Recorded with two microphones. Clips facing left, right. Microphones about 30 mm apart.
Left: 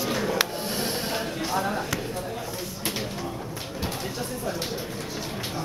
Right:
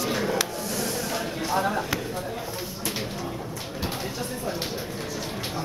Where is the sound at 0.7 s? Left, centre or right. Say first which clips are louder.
Even; left.